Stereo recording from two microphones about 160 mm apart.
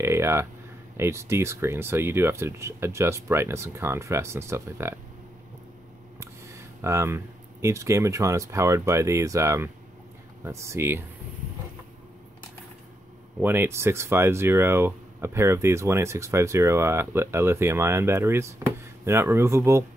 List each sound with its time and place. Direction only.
0.0 s speech: 15° right (ahead or behind)
6.8 s speech: 15° right (ahead or behind)
13.4 s speech: 15° right (ahead or behind)